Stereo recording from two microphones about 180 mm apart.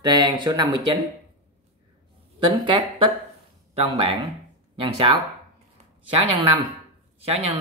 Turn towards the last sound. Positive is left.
turn(degrees=-35)  # may be behind; listen again after turning